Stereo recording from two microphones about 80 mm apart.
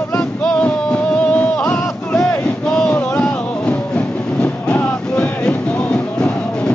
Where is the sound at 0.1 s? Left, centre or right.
Left.